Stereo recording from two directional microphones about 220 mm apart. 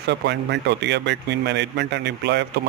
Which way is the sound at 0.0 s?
50° right (ahead or behind).